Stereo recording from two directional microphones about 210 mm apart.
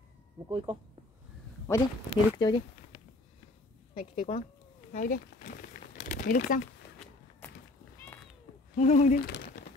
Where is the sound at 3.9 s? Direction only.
35° left (ahead or behind).